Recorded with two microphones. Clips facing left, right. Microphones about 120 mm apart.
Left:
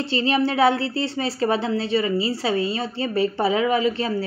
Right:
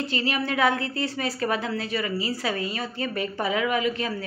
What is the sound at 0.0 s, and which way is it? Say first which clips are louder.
Speech: left 6 dB; 30° left (ahead or behind).